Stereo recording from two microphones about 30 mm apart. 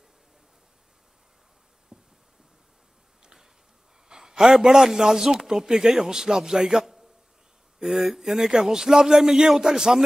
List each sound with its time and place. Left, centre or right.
1.9 s a sound: right
4.1 s a man's voice: centre
7.8 s a man's voice: centre